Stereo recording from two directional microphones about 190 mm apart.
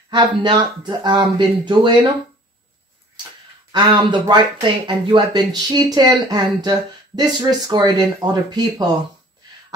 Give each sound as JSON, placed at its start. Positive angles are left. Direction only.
{"t": 0.1, "sound": "speech", "side_deg": -25}
{"t": 3.7, "sound": "speech", "side_deg": -25}